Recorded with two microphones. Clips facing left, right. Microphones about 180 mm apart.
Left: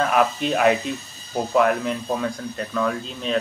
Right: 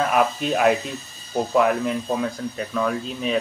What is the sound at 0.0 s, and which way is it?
Speech, centre (ahead or behind).